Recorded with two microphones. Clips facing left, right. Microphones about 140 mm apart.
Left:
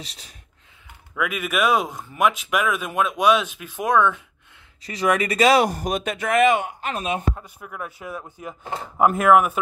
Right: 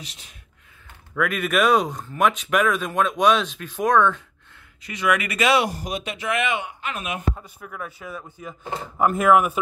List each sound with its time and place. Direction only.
0.0 s speech: 35° left (ahead or behind)
1.1 s speech: 5° left (ahead or behind)
4.8 s speech: 35° left (ahead or behind)
7.4 s speech: 10° left (ahead or behind)